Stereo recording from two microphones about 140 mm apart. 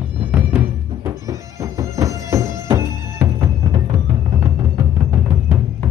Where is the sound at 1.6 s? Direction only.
25° right (ahead or behind).